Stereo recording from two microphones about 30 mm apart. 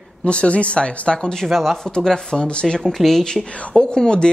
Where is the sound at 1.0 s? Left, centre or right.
Left.